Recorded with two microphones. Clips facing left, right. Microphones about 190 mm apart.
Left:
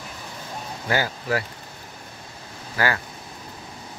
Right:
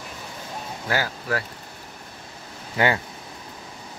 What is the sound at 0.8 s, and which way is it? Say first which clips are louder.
Speech: left 2 dB; 5° left (ahead or behind).